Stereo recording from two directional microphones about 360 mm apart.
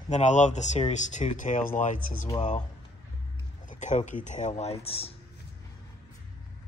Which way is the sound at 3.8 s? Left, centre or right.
Centre.